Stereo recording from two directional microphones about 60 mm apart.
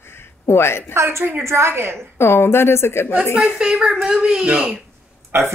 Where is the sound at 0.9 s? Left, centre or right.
Right.